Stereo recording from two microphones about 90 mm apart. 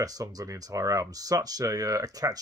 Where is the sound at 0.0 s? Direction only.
40° right (ahead or behind).